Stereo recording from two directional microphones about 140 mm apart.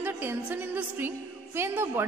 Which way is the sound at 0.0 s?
15° right (ahead or behind).